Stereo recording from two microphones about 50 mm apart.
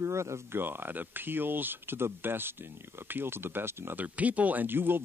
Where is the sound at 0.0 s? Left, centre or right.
Right.